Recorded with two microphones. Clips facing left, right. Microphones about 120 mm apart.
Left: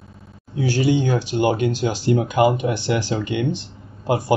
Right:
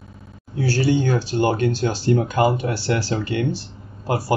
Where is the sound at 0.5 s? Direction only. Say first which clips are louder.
Left 1 dB; 15° left (ahead or behind).